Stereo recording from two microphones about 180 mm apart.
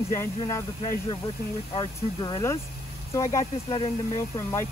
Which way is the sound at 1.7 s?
25° left (ahead or behind).